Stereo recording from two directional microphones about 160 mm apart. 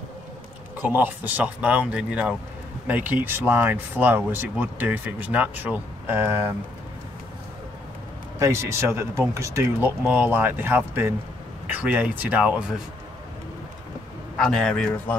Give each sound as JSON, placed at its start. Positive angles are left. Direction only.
{"t": 0.8, "sound": "speech", "side_deg": -10}
{"t": 8.4, "sound": "speech", "side_deg": -15}
{"t": 14.4, "sound": "a man's voice", "side_deg": 5}